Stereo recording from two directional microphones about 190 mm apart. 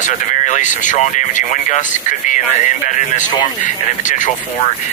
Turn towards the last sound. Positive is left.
turn(degrees=40)  # may be behind; listen again after turning